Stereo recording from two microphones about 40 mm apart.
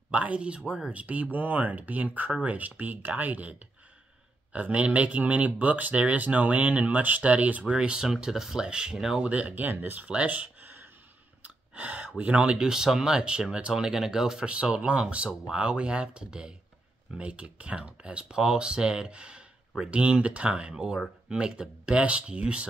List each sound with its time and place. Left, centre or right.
0.1 s speech: right
7.7 s speech: right
9.2 s speech: right
10.0 s a sound: right
11.4 s a sound: right
12.2 s speech: right
12.5 s speech: centre
14.4 s speech: right